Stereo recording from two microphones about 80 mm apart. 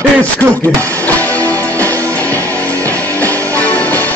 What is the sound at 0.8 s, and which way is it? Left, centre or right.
Music, left.